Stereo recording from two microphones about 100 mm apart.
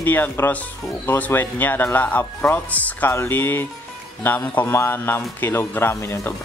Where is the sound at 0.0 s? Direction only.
20° left (ahead or behind).